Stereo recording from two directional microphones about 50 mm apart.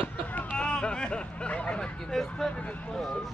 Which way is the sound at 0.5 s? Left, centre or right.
Centre.